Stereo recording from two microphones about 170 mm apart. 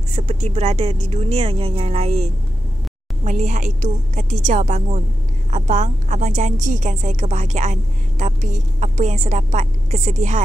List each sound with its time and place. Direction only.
0.1 s speech: 40° right (ahead or behind)
3.3 s a woman's voice: 45° right (ahead or behind)